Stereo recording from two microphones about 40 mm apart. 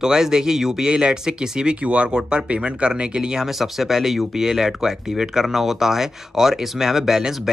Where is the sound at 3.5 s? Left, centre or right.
Centre.